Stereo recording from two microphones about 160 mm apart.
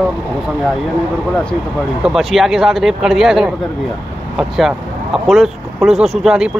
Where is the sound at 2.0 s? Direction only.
Centre (ahead or behind).